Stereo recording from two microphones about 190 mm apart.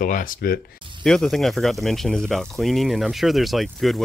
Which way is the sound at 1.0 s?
5° left (ahead or behind).